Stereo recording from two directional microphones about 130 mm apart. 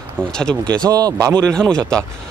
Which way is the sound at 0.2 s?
5° left (ahead or behind).